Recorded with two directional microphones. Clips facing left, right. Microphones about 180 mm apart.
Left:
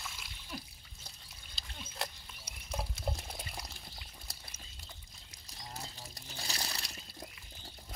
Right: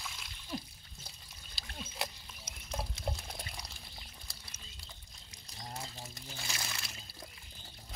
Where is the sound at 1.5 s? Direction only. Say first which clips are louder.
Right 1 dB; 5° right (ahead or behind).